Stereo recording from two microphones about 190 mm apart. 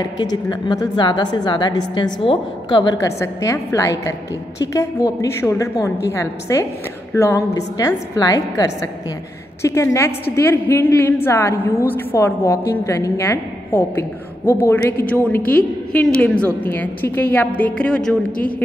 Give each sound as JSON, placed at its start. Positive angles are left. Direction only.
{"t": 0.0, "sound": "a woman's voice", "side_deg": 20}